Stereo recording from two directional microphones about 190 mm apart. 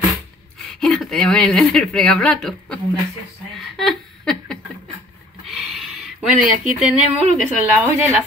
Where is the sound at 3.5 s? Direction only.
Centre (ahead or behind).